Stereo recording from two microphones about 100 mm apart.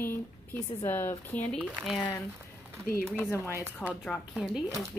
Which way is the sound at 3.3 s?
25° left (ahead or behind).